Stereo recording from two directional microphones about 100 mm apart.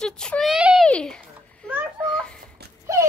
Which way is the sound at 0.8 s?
10° left (ahead or behind).